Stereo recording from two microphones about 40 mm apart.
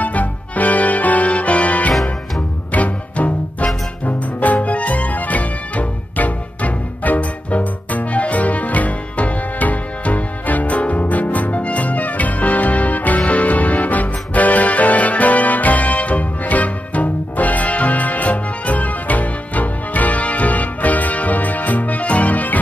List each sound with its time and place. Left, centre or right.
0.0 s music: left